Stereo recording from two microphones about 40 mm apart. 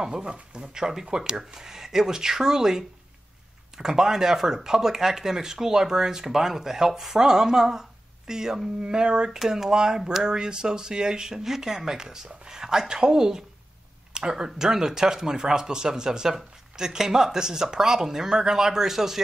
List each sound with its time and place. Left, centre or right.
0.0 s speech: right
9.3 s speech: centre